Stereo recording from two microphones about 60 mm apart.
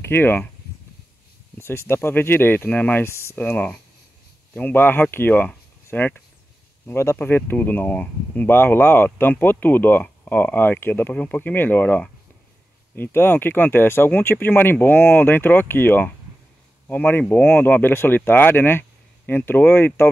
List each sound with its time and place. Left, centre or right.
0.0 s speech: left
1.6 s speech: left
6.9 s speech: left
7.2 s speech: left
8.5 s speech: left
12.9 s speech: left